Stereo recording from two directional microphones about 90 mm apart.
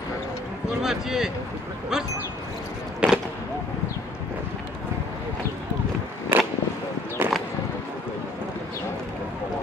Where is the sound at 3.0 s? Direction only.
10° right (ahead or behind).